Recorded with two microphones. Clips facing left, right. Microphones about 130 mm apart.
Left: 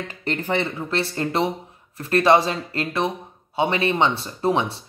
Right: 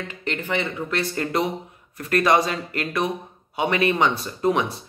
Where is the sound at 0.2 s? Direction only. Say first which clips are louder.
Left 3 dB; 35° left (ahead or behind).